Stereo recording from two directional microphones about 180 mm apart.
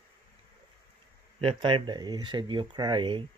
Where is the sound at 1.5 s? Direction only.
30° right (ahead or behind).